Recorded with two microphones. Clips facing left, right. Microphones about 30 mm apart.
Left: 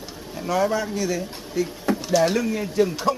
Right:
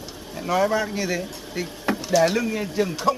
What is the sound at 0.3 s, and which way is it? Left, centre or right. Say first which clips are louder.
Speech: right 1 dB; centre.